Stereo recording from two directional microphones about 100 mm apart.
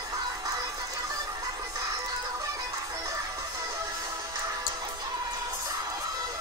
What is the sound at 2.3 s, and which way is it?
Music, 35° right (ahead or behind).